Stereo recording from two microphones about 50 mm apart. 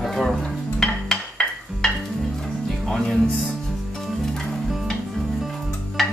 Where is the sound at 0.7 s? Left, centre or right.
Centre.